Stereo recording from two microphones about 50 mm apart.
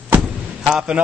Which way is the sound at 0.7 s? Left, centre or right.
Centre.